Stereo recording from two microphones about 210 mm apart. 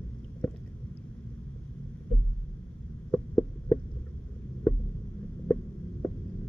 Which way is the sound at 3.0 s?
10° left (ahead or behind).